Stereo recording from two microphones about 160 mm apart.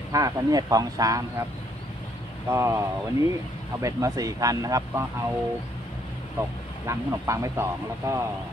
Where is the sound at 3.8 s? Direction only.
20° right (ahead or behind).